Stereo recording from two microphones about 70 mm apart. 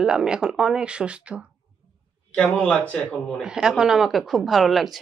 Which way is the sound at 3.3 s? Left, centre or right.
Centre.